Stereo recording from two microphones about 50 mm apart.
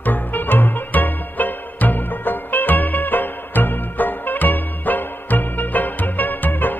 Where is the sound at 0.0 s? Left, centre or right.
Left.